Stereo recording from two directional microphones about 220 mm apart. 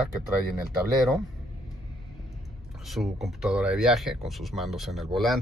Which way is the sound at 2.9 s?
Centre (ahead or behind).